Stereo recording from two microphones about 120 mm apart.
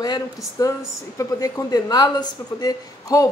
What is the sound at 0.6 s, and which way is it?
Speech, 30° left (ahead or behind).